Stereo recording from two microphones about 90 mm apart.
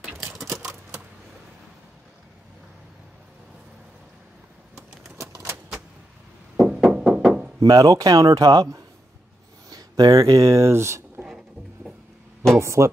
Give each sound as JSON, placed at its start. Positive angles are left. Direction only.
{"t": 0.2, "sound": "typewriter", "side_deg": 0}
{"t": 5.1, "sound": "a sound", "side_deg": -35}
{"t": 6.5, "sound": "knock", "side_deg": -5}
{"t": 7.6, "sound": "speech", "side_deg": -45}
{"t": 9.7, "sound": "a sound", "side_deg": -45}
{"t": 10.3, "sound": "speech", "side_deg": -35}
{"t": 11.2, "sound": "music", "side_deg": -10}
{"t": 12.5, "sound": "speech", "side_deg": -30}